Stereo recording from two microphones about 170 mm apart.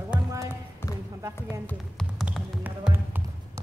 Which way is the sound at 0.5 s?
15° left (ahead or behind).